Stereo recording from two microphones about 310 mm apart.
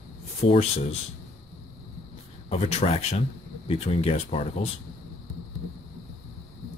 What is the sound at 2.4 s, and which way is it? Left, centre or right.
Speech, centre.